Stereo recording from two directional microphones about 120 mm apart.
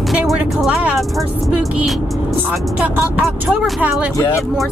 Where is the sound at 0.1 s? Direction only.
5° right (ahead or behind).